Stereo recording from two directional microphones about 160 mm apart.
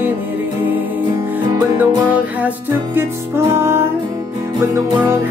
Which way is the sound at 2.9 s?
15° right (ahead or behind).